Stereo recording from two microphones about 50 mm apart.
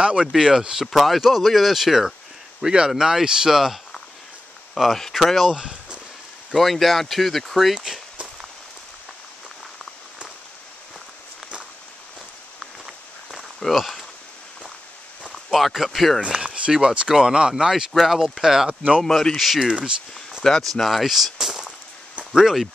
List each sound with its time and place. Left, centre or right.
0.0 s speech: right
0.3 s speech: centre
0.9 s speech: centre
2.6 s speech: centre
5.5 s speech: centre
6.5 s speech: centre
12.5 s walk: centre
13.7 s speech: centre
15.3 s speech: centre
16.2 s speech: centre
18.9 s speech: centre
20.8 s speech: centre